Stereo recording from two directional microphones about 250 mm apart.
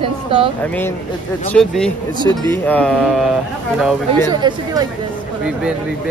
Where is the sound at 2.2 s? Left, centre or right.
Centre.